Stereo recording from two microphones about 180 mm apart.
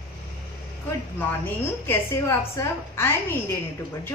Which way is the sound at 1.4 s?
15° left (ahead or behind).